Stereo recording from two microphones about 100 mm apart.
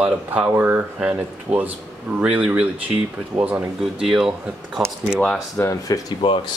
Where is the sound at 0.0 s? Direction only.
15° right (ahead or behind).